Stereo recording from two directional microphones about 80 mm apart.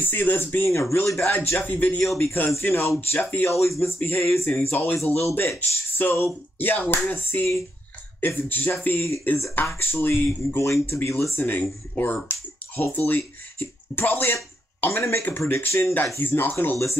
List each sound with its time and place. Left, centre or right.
0.0 s speech: left
4.9 s speech: left
10.6 s speech: left